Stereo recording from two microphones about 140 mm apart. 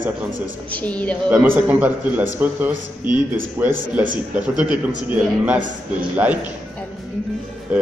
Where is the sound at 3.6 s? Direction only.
15° right (ahead or behind).